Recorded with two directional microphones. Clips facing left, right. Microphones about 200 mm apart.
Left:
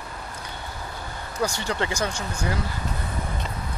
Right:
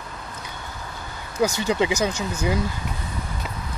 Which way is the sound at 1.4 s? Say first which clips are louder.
Right 5 dB; 10° right (ahead or behind).